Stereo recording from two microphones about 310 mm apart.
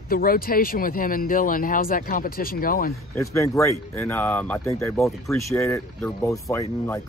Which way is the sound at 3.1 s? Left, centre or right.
Centre.